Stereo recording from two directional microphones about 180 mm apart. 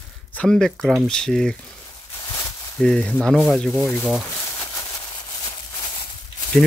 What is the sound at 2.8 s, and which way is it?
Speech, 5° left (ahead or behind).